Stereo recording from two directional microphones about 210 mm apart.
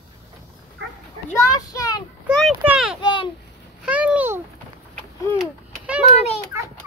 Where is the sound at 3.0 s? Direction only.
20° left (ahead or behind).